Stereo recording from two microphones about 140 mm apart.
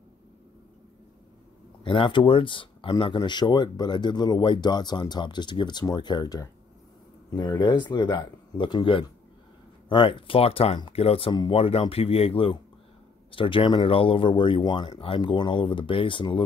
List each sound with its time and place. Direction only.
1.9 s speech: 35° left (ahead or behind)